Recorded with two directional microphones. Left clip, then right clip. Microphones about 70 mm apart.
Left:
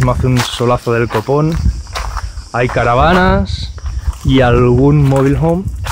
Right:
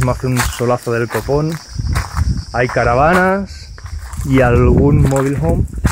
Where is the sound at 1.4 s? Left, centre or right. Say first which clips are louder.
Left 4 dB; centre.